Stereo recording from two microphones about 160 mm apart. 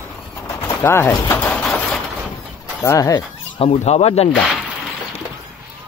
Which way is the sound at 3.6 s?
40° left (ahead or behind).